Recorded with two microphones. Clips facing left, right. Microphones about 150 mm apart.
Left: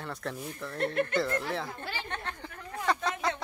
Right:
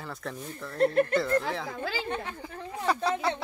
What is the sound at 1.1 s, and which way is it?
Speech, centre (ahead or behind).